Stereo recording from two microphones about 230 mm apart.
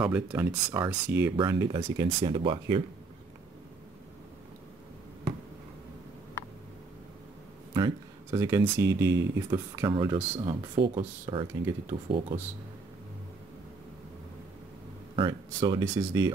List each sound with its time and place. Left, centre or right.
0.0 s speech: centre
1.3 s speech: centre
7.7 s speech: centre
10.8 s speech: right
15.1 s speech: right